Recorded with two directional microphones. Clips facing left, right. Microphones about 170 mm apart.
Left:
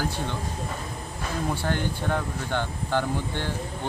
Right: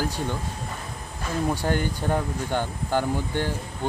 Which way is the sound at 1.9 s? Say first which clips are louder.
Right 2 dB; 10° right (ahead or behind).